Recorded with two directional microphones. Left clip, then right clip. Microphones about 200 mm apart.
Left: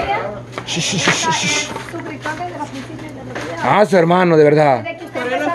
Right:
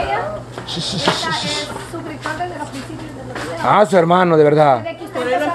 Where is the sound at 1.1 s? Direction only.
60° left (ahead or behind).